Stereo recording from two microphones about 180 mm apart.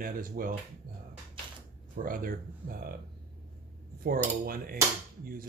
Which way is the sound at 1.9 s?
50° right (ahead or behind).